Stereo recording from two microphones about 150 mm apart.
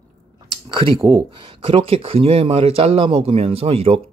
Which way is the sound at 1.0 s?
20° right (ahead or behind).